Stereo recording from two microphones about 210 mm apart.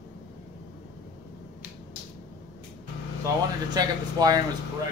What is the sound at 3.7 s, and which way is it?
Speech, 20° right (ahead or behind).